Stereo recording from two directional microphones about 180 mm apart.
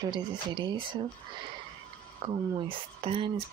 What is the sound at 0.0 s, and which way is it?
Speech, 25° right (ahead or behind).